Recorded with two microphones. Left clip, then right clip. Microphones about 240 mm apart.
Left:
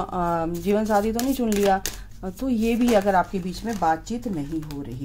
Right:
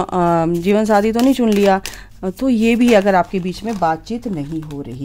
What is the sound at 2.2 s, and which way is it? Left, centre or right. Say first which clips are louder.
Speech: right 9 dB; right.